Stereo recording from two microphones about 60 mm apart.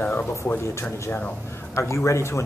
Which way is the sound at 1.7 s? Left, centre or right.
Left.